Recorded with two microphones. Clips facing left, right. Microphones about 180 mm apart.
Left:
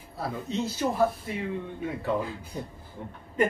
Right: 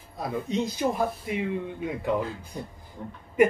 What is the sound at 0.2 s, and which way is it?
Speech, 15° right (ahead or behind).